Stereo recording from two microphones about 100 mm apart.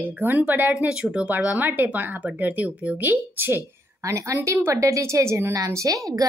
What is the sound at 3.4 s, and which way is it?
A woman's voice, 25° right (ahead or behind).